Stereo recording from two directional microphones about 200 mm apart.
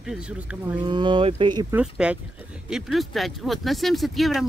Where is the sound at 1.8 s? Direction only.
5° right (ahead or behind).